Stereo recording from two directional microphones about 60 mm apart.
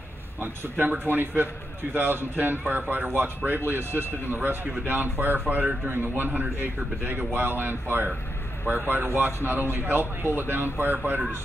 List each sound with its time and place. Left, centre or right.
0.4 s speech: right